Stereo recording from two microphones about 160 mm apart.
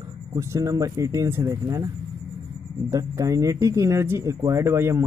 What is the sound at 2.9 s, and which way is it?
Speech, 20° right (ahead or behind).